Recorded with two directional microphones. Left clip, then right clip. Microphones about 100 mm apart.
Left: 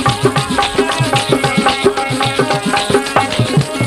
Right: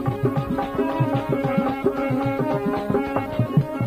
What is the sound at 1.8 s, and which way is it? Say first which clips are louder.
Music: left 9 dB; 30° right (ahead or behind).